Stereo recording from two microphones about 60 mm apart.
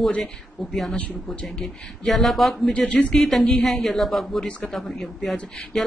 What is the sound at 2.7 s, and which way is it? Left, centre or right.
Speech, left.